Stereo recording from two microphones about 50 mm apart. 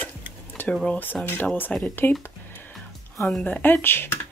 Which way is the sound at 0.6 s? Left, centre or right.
Left.